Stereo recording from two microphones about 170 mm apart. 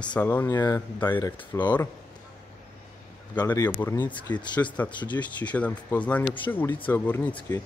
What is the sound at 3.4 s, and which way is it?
Speech, 10° left (ahead or behind).